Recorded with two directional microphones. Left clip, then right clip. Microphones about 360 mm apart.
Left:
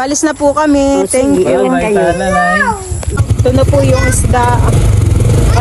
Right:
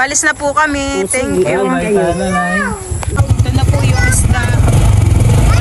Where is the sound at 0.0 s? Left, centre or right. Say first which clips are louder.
Left 1 dB; centre.